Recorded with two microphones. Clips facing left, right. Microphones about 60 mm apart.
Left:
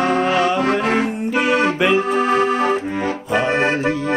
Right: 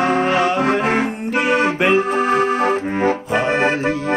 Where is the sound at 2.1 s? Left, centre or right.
Right.